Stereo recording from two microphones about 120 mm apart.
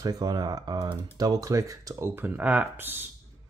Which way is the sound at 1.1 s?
30° right (ahead or behind).